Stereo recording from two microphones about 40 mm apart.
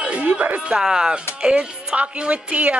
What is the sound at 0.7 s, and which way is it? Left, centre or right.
A woman's voice, centre.